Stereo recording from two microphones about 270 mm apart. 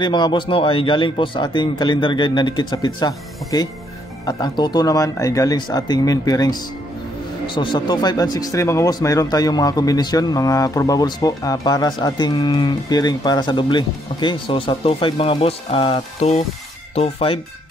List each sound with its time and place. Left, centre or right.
0.0 s speech: centre